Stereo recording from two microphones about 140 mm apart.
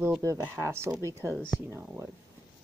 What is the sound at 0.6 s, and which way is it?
Speech, 20° right (ahead or behind).